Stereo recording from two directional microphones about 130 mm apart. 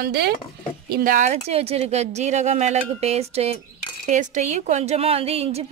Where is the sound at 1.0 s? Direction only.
80° right; by 3.5 s 55° right (ahead or behind).